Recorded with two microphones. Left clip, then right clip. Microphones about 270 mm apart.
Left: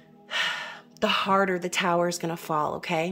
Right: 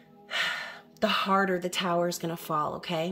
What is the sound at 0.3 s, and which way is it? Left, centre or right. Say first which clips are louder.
A woman's voice: left 2 dB; centre.